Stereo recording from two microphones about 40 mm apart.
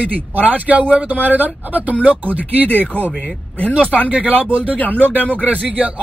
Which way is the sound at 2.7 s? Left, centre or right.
Left.